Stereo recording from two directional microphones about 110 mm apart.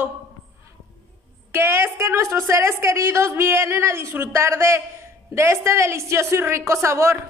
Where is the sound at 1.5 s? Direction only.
25° right (ahead or behind).